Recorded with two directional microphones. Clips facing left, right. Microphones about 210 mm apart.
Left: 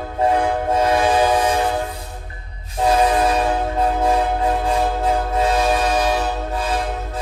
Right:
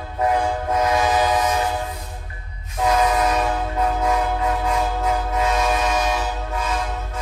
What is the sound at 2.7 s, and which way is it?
Train, 30° left (ahead or behind).